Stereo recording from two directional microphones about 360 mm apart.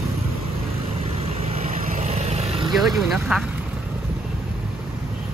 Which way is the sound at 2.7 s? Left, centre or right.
Centre.